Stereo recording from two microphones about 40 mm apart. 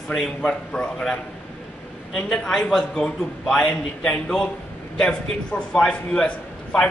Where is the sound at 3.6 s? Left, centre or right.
Left.